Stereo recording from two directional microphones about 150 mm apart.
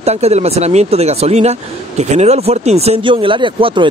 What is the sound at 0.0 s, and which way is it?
Speech, 45° right (ahead or behind).